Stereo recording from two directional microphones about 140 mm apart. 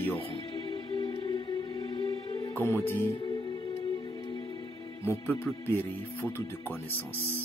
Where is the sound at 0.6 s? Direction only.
35° left (ahead or behind).